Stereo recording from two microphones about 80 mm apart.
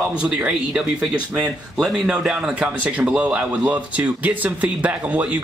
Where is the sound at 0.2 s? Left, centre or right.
Centre.